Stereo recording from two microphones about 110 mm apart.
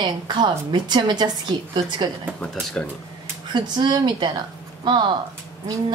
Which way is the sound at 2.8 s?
10° left (ahead or behind).